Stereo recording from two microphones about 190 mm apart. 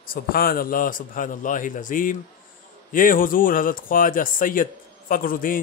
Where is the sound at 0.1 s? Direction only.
50° left (ahead or behind).